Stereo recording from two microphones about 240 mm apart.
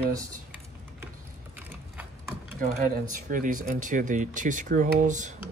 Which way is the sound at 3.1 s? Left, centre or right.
Right.